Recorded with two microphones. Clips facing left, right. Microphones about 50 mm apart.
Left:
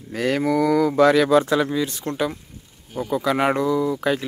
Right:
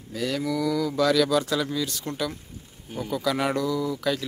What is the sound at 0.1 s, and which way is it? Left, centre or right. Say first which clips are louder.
Speech: left 7 dB; left.